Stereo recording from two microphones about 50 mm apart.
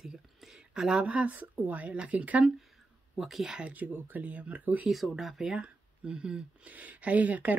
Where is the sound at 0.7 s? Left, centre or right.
Centre.